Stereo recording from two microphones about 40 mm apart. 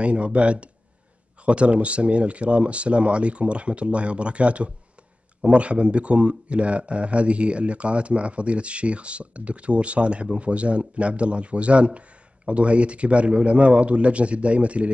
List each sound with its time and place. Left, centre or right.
0.0 s speech: right